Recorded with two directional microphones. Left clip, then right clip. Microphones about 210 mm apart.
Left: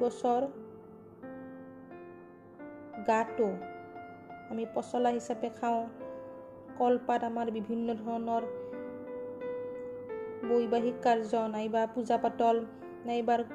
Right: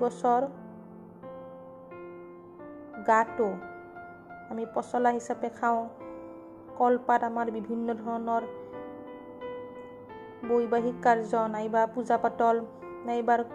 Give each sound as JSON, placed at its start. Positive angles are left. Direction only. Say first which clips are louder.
{"t": 0.0, "sound": "a woman's voice", "louder": "right 4 dB", "side_deg": -10}
{"t": 3.0, "sound": "a woman's voice", "louder": "right 5 dB", "side_deg": -10}
{"t": 10.0, "sound": "a woman's voice", "louder": "right 2 dB", "side_deg": 0}